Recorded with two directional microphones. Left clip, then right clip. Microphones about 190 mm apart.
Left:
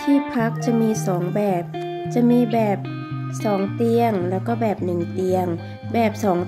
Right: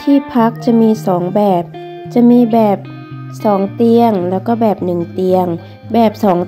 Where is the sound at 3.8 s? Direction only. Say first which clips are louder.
Right 8 dB; 15° right (ahead or behind).